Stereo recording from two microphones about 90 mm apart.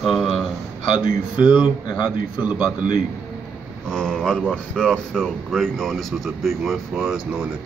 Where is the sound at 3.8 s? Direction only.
5° left (ahead or behind).